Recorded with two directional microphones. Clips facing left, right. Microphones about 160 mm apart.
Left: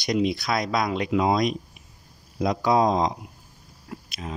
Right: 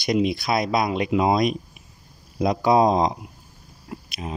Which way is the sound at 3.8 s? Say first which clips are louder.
Right 3 dB; 15° right (ahead or behind).